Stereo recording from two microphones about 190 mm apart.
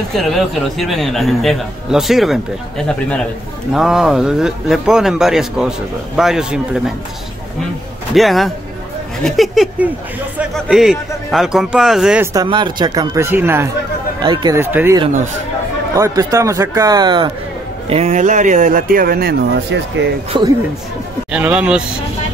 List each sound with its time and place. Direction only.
0.1 s a man's voice: centre (ahead or behind)
3.7 s a man's voice: centre (ahead or behind)
8.1 s a man's voice: centre (ahead or behind)
12.4 s speech: 25° right (ahead or behind)
14.2 s speech: 25° right (ahead or behind)
14.6 s a man's voice: 10° right (ahead or behind)
17.8 s speech: 35° right (ahead or behind); by 20.1 s 65° right (ahead or behind)
20.3 s speech: 25° right (ahead or behind)
21.3 s a man's voice: 5° right (ahead or behind)